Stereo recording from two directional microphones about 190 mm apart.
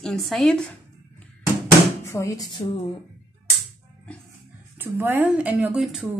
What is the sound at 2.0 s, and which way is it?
Speech, 15° left (ahead or behind).